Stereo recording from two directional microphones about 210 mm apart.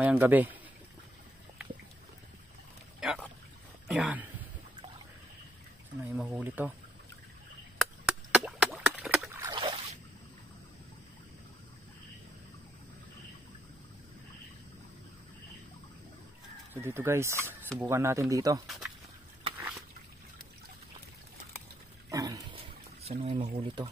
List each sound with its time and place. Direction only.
0.0 s speech: 10° right (ahead or behind)
3.0 s pour: centre (ahead or behind)
3.8 s speech: 5° right (ahead or behind)
6.0 s speech: 5° right (ahead or behind)
7.8 s chop: 5° right (ahead or behind)
9.4 s rowboat: 20° right (ahead or behind)
16.7 s speech: 10° right (ahead or behind)
17.4 s speech: 10° left (ahead or behind)
17.7 s speech: 10° right (ahead or behind)
22.1 s a sound: 15° right (ahead or behind)
23.5 s speech: 20° right (ahead or behind)